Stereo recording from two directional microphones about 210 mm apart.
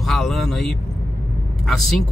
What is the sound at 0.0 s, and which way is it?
Vehicle, centre (ahead or behind).